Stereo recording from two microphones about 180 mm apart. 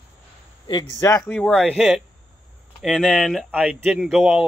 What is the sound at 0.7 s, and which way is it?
Speech, 25° left (ahead or behind).